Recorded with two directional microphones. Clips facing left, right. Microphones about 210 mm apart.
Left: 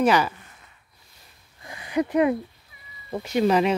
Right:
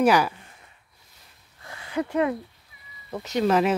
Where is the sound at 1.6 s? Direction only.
15° left (ahead or behind).